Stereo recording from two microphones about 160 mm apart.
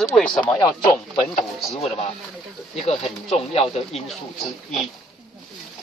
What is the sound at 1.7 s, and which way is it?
Speech, 40° left (ahead or behind).